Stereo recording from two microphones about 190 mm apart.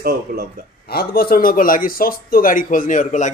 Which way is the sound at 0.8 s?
55° left (ahead or behind).